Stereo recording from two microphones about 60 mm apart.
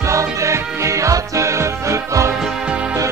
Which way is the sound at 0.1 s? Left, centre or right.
Right.